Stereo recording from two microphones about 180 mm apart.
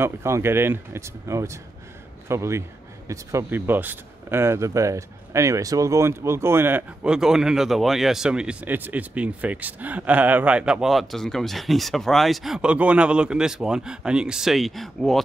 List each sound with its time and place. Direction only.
0.0 s speech: 15° right (ahead or behind); by 15.2 s centre (ahead or behind)